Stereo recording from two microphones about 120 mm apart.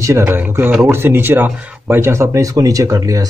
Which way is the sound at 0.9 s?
20° right (ahead or behind).